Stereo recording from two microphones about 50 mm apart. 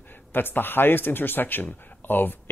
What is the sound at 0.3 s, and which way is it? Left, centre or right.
Speech, left.